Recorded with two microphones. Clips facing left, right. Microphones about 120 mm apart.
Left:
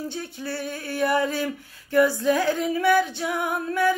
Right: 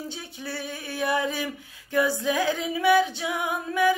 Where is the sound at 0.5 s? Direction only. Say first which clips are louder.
Left 2 dB; 15° right (ahead or behind).